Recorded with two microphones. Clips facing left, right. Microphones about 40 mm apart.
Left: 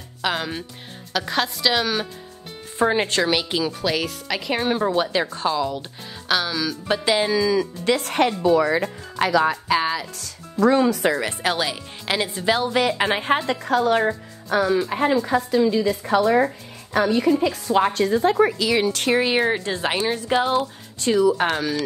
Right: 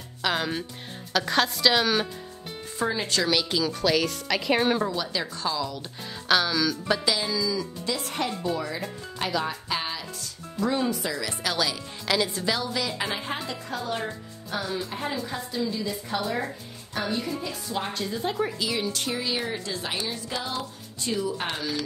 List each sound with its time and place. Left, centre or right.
0.2 s a woman's voice: centre
2.8 s a woman's voice: left
3.3 s speech: left
3.8 s speech: centre
4.8 s a woman's voice: left
6.2 s speech: centre
6.9 s speech: left
11.1 s a woman's voice: left
13.5 s a woman's voice: left
17.0 s a woman's voice: left
18.9 s a woman's voice: left
21.0 s a woman's voice: left